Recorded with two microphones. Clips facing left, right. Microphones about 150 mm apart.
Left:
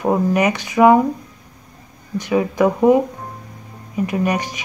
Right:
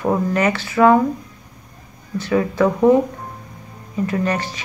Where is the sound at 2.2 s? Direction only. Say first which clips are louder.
Left 1 dB; 15° left (ahead or behind).